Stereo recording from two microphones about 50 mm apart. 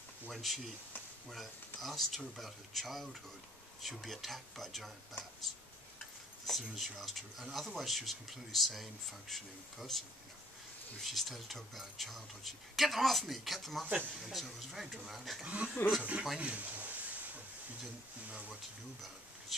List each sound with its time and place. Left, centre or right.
0.3 s speech: centre
1.8 s speech: centre
6.7 s speech: centre
13.8 s speech: right
14.2 s speech: centre
15.4 s speech: right
16.3 s a sound: right
18.3 s a sound: right